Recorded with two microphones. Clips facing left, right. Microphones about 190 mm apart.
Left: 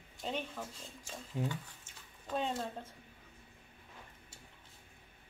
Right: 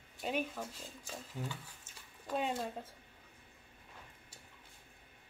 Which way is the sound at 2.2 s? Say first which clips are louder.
Even; 5° right (ahead or behind).